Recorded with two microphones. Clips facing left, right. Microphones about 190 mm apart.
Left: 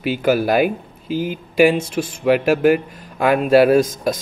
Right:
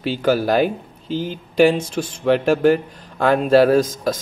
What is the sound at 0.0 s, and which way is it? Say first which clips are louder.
Speech: left 1 dB; 10° left (ahead or behind).